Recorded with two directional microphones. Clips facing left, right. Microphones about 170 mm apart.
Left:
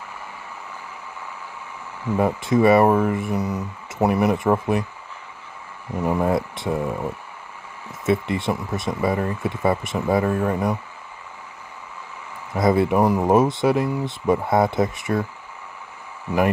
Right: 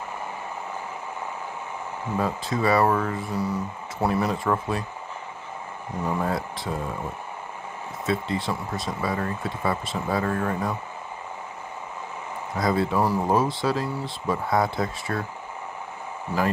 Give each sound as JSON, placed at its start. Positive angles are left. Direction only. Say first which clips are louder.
{"t": 2.1, "sound": "speech", "louder": "left 7 dB", "side_deg": 20}
{"t": 6.0, "sound": "speech", "louder": "left 6 dB", "side_deg": 20}
{"t": 8.0, "sound": "speech", "louder": "left 5 dB", "side_deg": 20}
{"t": 12.5, "sound": "speech", "louder": "left 5 dB", "side_deg": 20}